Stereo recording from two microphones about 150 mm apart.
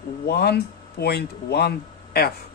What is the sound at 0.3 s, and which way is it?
Speech, 90° left.